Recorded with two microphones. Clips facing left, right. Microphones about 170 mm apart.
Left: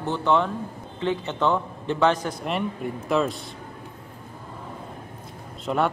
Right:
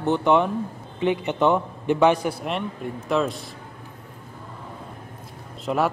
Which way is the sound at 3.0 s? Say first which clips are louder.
Even; centre (ahead or behind).